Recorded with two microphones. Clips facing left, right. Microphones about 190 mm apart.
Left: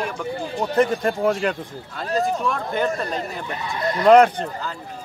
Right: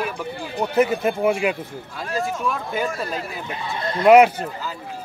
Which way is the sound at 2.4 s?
5° right (ahead or behind).